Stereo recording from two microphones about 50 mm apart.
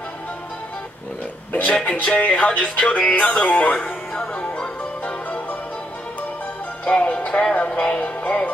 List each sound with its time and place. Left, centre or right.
1.5 s a sound: left
2.1 s music: left
6.8 s music: left